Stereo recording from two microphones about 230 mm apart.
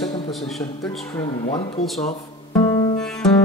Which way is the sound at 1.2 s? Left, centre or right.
Left.